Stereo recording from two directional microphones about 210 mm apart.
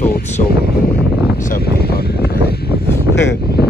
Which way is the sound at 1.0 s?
50° left (ahead or behind).